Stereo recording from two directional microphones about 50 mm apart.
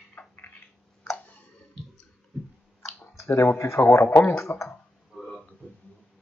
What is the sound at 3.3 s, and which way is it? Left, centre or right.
Speech, left.